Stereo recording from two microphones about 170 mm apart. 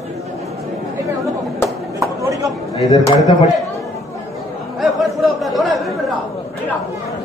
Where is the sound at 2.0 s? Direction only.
20° right (ahead or behind).